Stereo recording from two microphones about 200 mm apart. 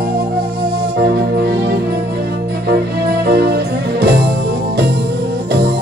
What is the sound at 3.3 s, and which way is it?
Music, 55° right (ahead or behind).